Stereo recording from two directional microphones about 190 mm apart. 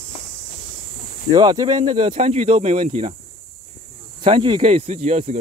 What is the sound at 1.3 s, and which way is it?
Speech, 20° right (ahead or behind).